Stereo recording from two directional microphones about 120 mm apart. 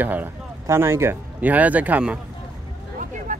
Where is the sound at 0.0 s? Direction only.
15° right (ahead or behind).